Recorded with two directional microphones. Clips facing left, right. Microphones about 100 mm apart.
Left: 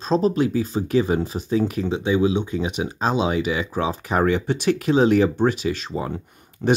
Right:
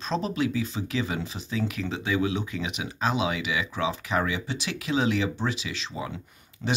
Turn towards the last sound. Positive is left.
turn(degrees=55)  # may be behind; listen again after turning